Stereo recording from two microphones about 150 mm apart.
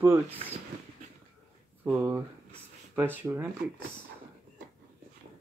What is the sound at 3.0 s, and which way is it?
Speech, 15° right (ahead or behind).